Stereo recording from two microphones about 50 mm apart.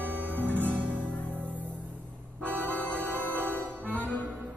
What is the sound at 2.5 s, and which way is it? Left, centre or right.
Organ, left.